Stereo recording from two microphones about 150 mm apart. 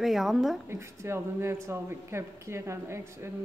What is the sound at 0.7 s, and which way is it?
Speech, 20° right (ahead or behind).